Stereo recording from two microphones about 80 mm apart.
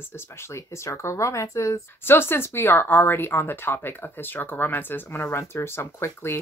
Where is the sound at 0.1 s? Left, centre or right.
Left.